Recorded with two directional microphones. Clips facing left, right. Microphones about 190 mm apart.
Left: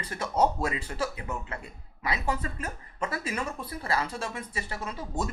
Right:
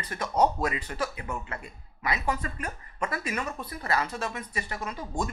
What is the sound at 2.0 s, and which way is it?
Speech, 30° left (ahead or behind).